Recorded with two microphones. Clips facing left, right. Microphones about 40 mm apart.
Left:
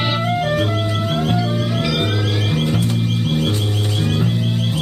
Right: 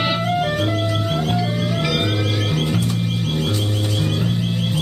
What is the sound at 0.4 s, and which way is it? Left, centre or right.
Music, centre.